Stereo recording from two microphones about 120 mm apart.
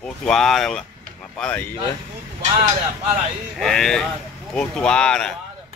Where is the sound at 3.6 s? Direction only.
5° left (ahead or behind).